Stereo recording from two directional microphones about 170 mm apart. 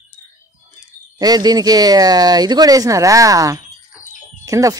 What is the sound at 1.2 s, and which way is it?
Speech, 25° right (ahead or behind).